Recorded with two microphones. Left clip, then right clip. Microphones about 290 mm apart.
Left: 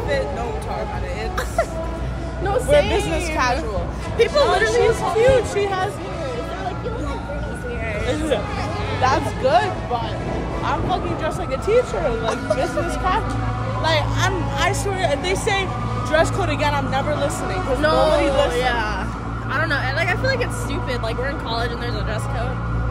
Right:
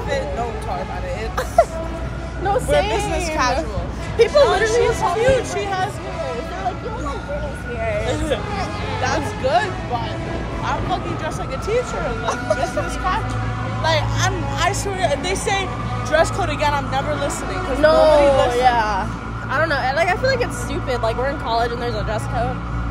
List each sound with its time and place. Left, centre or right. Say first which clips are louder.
2.4 s speech: left 1 dB; centre
4.8 s speech: left 1 dB; centre
9.0 s speech: left 3 dB; left
17.7 s speech: right 5 dB; centre
18.1 s speech: right 4 dB; centre
18.5 s speech: right 5 dB; centre